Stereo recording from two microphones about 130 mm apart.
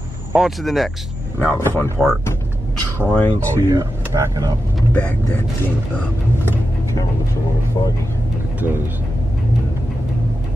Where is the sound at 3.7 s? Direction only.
25° right (ahead or behind).